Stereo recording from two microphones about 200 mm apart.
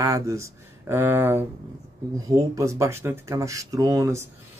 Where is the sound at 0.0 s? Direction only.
15° right (ahead or behind).